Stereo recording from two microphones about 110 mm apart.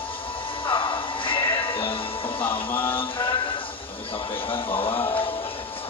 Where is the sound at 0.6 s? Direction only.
50° left (ahead or behind).